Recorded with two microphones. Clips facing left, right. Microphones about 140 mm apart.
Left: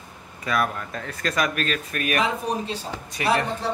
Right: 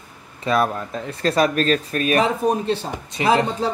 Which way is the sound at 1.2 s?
30° right (ahead or behind).